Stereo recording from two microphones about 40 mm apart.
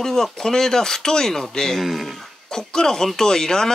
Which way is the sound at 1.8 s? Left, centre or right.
Centre.